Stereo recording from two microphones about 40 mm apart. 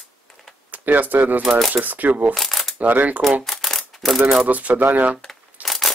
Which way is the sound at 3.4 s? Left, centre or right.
Centre.